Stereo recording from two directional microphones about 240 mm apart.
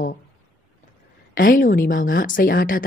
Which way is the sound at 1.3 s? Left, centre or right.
Left.